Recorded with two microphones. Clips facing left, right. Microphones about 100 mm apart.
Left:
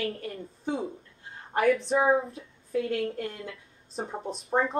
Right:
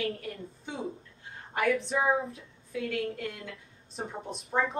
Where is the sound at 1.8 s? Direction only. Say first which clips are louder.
Left 4 dB; 30° left (ahead or behind).